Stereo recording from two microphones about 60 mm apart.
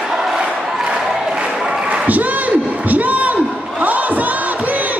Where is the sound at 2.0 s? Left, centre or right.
Right.